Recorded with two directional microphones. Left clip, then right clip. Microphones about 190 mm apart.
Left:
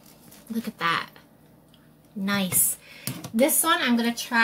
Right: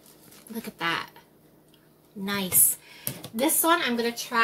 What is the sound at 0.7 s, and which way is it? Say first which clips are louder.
Speech: left 3 dB; 30° right (ahead or behind).